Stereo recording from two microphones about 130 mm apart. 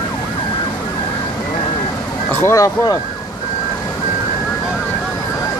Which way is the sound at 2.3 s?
20° left (ahead or behind).